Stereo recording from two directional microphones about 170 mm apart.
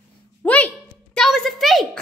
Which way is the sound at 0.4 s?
10° left (ahead or behind).